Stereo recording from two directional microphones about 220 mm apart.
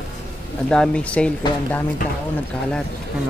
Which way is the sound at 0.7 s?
5° left (ahead or behind).